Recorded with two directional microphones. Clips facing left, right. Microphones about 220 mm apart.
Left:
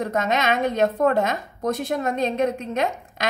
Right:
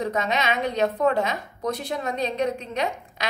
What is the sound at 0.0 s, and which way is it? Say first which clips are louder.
A woman's voice: left 2 dB; 50° left (ahead or behind).